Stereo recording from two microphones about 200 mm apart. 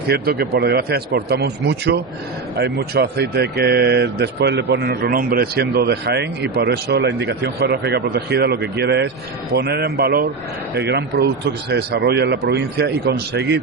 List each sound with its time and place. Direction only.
0.0 s speech: 55° right (ahead or behind)